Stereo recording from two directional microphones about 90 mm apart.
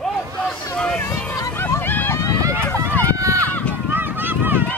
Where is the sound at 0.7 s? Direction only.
10° left (ahead or behind).